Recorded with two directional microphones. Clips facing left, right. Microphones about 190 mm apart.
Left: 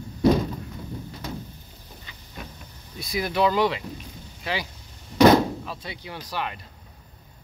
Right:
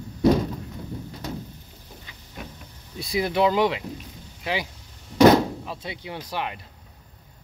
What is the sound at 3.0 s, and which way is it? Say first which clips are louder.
Speech: right 2 dB; 30° right (ahead or behind).